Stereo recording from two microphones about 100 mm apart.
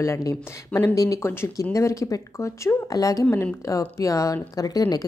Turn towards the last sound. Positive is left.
turn(degrees=40)  # may be behind; listen again after turning